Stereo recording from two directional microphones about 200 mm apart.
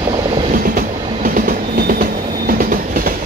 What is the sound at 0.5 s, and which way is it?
Train, 45° right (ahead or behind).